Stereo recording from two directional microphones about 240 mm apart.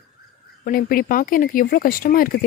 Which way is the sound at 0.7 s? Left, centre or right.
Left.